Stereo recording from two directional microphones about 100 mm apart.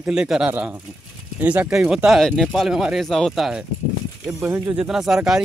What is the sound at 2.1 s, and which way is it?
Speech, 5° left (ahead or behind).